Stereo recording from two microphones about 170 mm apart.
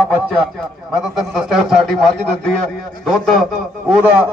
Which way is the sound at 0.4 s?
Centre (ahead or behind).